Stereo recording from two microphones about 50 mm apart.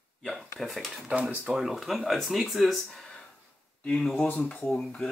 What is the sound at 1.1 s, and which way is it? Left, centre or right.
Speech, right.